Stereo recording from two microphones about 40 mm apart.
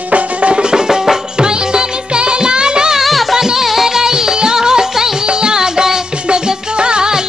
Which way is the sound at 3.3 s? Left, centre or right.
Centre.